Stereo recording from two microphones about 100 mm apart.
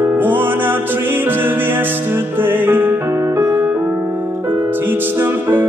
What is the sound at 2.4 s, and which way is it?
Music, 20° right (ahead or behind).